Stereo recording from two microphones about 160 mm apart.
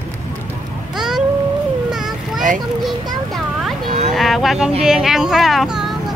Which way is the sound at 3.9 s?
45° right (ahead or behind).